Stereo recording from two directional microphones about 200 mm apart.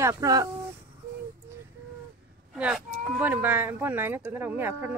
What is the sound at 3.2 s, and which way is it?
Speech, 10° right (ahead or behind).